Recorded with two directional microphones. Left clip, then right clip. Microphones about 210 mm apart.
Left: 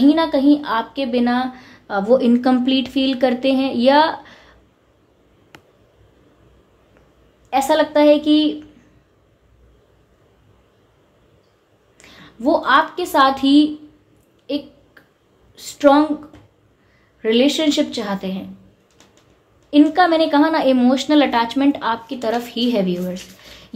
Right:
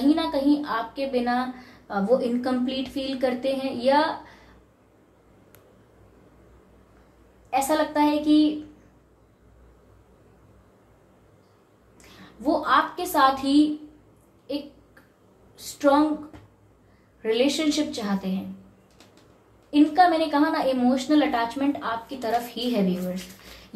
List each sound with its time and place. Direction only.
0.1 s speech: 45° left (ahead or behind)
7.4 s speech: 50° left (ahead or behind)
12.4 s a woman's voice: 45° left (ahead or behind)
17.2 s speech: 45° left (ahead or behind)
19.7 s speech: 45° left (ahead or behind)